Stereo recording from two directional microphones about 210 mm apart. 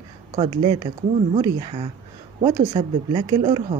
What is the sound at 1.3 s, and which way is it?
Speech, 25° right (ahead or behind).